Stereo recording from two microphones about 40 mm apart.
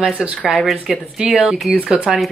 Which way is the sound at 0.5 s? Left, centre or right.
Centre.